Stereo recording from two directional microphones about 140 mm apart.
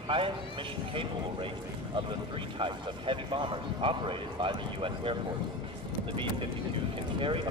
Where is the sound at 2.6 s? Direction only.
35° right (ahead or behind).